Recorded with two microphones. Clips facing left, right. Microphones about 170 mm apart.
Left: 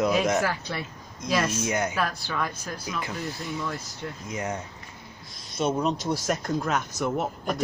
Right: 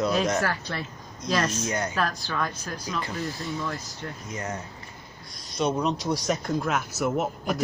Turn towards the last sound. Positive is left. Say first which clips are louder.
# right 1 dB
turn(degrees=0)  # may be behind; listen again after turning